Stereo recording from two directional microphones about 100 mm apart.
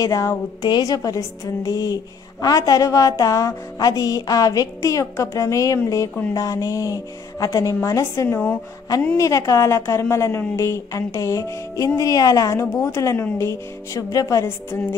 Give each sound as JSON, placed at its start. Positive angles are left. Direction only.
{"t": 0.0, "sound": "a woman's voice", "side_deg": 30}